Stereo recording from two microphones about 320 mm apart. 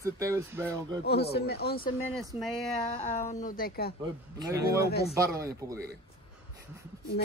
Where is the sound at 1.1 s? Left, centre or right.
Left.